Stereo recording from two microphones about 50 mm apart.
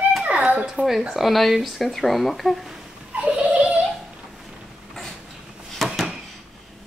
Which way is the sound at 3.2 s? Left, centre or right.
Right.